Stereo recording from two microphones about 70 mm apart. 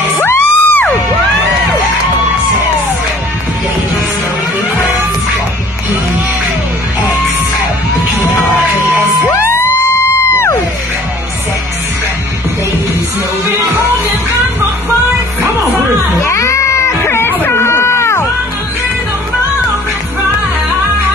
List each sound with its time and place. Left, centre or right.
0.2 s music: left
9.3 s music: left
16.2 s cat: left